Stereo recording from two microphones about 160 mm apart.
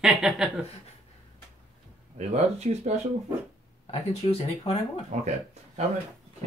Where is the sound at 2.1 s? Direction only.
45° right (ahead or behind).